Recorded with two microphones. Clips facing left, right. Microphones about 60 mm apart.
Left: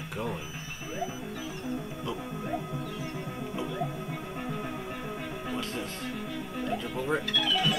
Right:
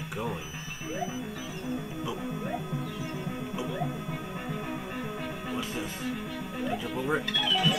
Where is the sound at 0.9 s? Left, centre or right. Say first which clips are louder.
Right 1 dB; centre.